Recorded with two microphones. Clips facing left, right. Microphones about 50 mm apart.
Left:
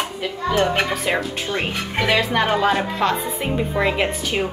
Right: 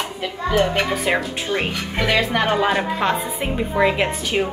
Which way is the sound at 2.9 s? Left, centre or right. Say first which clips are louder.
Even; right.